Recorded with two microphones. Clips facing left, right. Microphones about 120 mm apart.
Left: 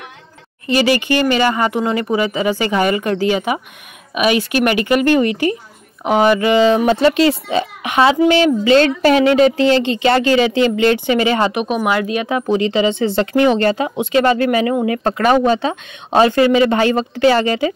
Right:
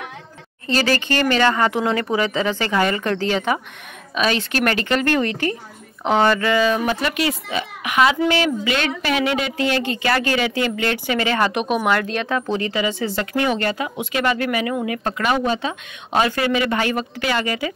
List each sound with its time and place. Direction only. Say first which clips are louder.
0.7 s speech: left 5 dB; 15° left (ahead or behind)
11.5 s speech: left 2 dB; centre (ahead or behind); by 17.7 s 30° left (ahead or behind)